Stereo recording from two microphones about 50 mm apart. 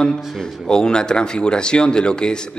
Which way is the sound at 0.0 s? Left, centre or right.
Centre.